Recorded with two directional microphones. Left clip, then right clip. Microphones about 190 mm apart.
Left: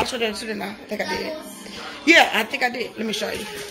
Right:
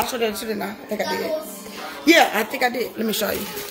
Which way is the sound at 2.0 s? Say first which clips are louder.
Left 1 dB; 10° right (ahead or behind).